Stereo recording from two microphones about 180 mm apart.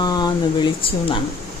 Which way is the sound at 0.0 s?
20° left (ahead or behind).